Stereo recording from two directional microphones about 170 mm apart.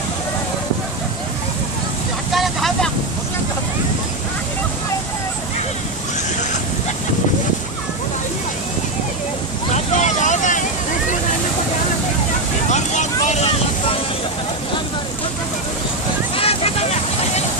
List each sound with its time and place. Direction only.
2.3 s vehicle: centre (ahead or behind)
9.7 s vehicle: 45° left (ahead or behind)
12.6 s vehicle: 45° left (ahead or behind)
16.3 s vehicle: 35° left (ahead or behind)